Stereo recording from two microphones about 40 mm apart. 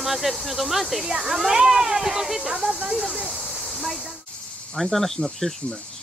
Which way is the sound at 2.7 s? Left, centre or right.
Right.